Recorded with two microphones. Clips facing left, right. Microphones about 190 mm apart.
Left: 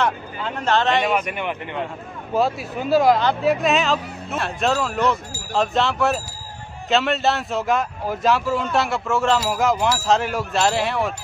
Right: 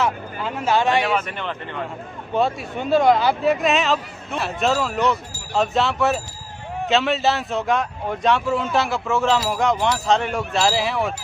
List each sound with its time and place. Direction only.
0.0 s speech: 5° right (ahead or behind)
1.0 s speech: 10° left (ahead or behind)
2.3 s speech: centre (ahead or behind)